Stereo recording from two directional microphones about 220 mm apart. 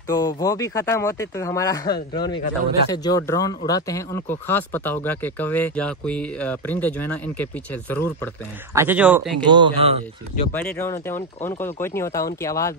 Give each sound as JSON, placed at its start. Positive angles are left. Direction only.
{"t": 0.1, "sound": "speech", "side_deg": 15}
{"t": 8.7, "sound": "speech", "side_deg": -10}
{"t": 9.5, "sound": "speech", "side_deg": -25}
{"t": 10.5, "sound": "speech", "side_deg": 5}